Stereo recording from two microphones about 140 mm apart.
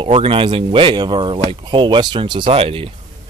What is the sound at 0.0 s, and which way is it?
Speech, 40° right (ahead or behind).